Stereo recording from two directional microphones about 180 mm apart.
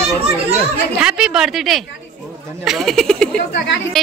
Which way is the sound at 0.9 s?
5° right (ahead or behind).